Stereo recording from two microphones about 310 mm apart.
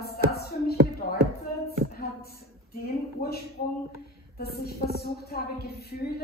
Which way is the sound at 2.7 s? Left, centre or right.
Left.